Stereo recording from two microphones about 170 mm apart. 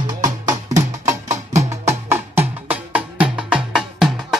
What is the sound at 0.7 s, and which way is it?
Music, 45° right (ahead or behind).